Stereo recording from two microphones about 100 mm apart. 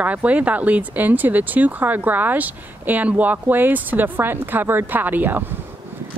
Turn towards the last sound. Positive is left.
turn(degrees=-20)  # may be behind; listen again after turning